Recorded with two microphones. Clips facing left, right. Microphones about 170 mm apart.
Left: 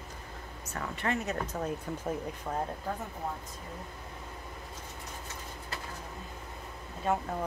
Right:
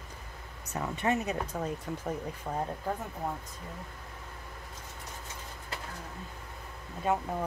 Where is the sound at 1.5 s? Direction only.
Centre (ahead or behind).